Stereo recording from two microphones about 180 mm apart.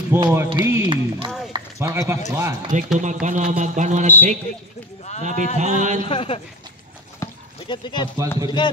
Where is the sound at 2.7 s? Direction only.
45° right (ahead or behind).